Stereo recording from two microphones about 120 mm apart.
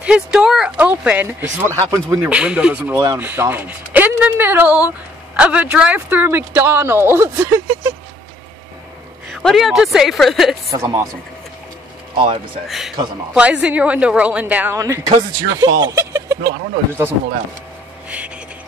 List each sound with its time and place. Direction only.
0.0 s speech: 10° right (ahead or behind)
2.2 s speech: 10° right (ahead or behind)
9.3 s a woman's voice: centre (ahead or behind)
10.7 s speech: 25° right (ahead or behind)
12.6 s a woman's voice: centre (ahead or behind)
14.8 s speech: 30° right (ahead or behind)